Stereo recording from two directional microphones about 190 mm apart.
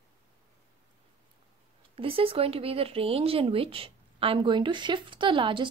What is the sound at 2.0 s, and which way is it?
Speech, 30° right (ahead or behind).